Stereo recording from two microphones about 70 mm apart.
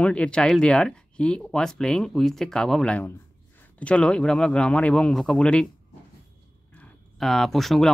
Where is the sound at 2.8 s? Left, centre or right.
Left.